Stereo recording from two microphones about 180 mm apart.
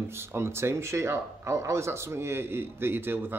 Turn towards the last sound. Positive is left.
turn(degrees=-10)  # may be behind; listen again after turning